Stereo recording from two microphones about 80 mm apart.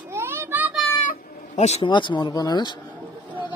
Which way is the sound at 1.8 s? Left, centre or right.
Left.